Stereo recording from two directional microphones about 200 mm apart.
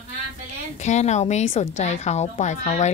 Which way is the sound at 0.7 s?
35° left (ahead or behind).